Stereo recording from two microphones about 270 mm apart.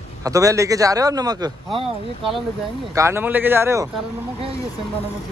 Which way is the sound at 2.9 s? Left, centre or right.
Centre.